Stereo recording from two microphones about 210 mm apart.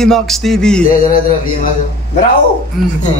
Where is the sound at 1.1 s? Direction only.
40° left (ahead or behind).